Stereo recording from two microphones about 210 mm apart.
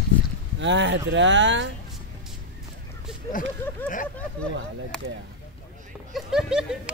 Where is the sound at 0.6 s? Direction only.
60° right (ahead or behind).